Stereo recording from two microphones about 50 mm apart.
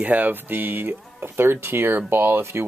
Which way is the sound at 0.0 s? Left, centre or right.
Right.